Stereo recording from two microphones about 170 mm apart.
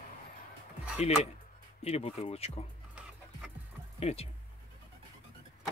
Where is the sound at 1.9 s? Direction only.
35° left (ahead or behind).